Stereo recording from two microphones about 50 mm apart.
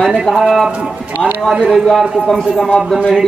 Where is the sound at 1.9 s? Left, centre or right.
Centre.